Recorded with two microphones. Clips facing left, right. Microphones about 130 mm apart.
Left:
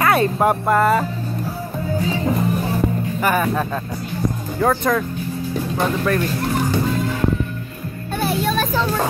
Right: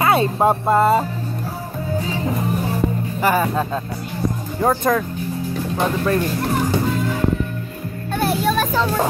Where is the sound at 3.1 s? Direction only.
25° right (ahead or behind).